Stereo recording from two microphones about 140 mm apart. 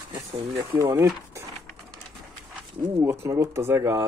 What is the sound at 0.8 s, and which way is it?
Speech, 20° right (ahead or behind).